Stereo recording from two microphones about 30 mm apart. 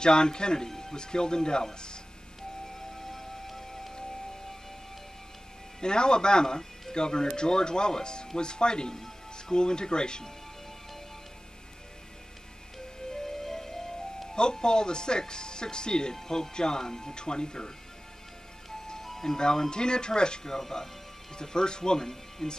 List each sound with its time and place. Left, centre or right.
0.0 s speech: left
0.7 s music: centre
0.9 s speech: left
3.0 s music: centre
5.8 s speech: left
12.7 s music: centre
14.3 s speech: left
18.9 s ice cream truck: centre
19.2 s speech: left
20.4 s speech: centre
21.4 s speech: left